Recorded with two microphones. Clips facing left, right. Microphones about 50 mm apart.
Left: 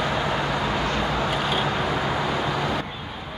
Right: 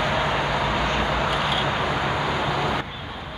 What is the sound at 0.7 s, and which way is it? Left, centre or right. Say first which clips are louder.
Vehicle: right 1 dB; right.